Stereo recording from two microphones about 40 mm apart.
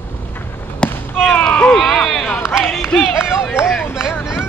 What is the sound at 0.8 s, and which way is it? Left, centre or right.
Basketball bounce, left.